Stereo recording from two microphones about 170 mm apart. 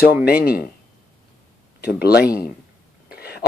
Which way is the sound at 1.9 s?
65° left (ahead or behind).